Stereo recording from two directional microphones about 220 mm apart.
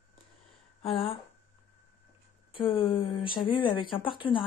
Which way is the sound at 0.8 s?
25° left (ahead or behind).